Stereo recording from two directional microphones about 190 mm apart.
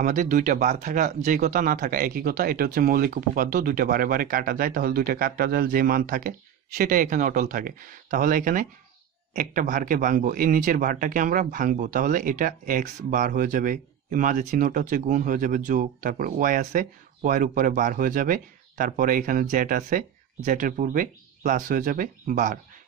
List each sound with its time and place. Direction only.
0.0 s a man's voice: 45° right (ahead or behind)